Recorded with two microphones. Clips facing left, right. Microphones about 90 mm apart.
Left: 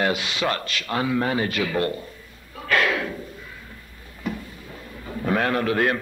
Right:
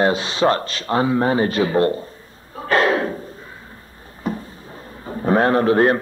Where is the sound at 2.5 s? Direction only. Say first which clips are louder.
Right 5 dB; 35° right (ahead or behind).